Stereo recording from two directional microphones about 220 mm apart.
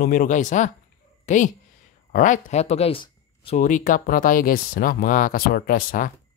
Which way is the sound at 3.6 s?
35° left (ahead or behind).